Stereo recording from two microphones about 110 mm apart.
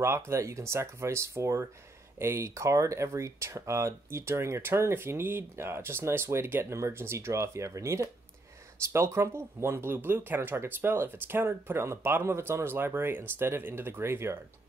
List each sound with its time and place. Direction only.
0.0 s speech: 25° right (ahead or behind)